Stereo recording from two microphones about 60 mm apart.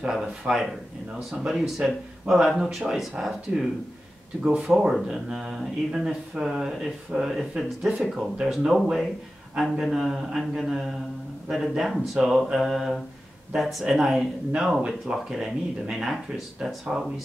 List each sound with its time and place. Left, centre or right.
0.0 s speech: centre
1.9 s speech: centre
4.4 s speech: centre
4.9 s speech: centre